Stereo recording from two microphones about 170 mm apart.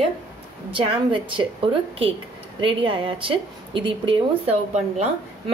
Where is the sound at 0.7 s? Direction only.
30° right (ahead or behind).